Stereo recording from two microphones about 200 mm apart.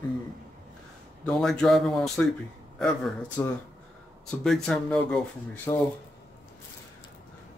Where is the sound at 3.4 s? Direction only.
10° left (ahead or behind).